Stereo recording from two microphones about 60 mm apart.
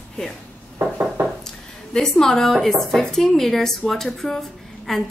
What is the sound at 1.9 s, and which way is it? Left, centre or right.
A woman's voice, centre.